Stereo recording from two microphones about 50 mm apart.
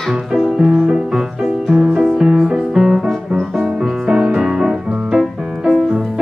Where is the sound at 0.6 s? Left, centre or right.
Centre.